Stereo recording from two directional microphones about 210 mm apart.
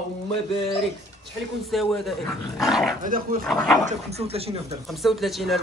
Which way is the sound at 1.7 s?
Centre (ahead or behind).